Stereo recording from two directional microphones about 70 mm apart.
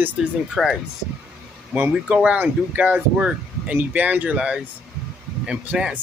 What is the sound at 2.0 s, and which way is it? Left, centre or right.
A man's voice, centre.